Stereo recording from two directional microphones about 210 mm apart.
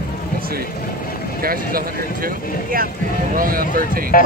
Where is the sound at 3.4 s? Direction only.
45° right (ahead or behind).